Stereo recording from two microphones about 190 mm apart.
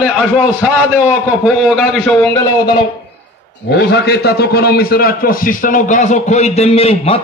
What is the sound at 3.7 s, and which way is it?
A man's voice, 65° left (ahead or behind).